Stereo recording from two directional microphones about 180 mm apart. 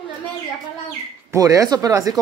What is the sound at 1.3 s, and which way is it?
Speech, 20° right (ahead or behind).